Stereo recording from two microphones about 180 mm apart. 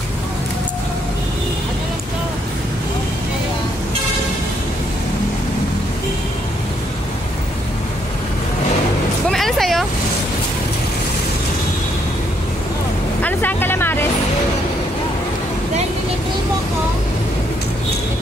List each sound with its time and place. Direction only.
9.3 s vehicle: centre (ahead or behind)
13.2 s vehicle: 10° left (ahead or behind)